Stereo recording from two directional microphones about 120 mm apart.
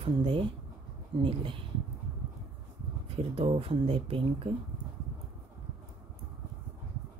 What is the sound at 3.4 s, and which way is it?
Speech, 55° right (ahead or behind).